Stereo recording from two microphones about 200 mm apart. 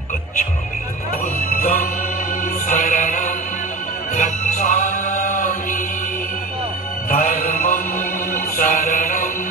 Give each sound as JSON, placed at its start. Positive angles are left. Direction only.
{"t": 1.6, "sound": "music", "side_deg": 40}
{"t": 7.1, "sound": "music", "side_deg": 45}
{"t": 8.5, "sound": "mantra", "side_deg": 40}